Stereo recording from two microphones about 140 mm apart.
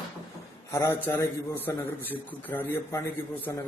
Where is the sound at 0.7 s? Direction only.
20° left (ahead or behind).